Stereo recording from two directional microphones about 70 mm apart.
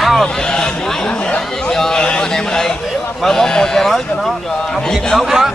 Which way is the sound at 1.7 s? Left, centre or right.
Centre.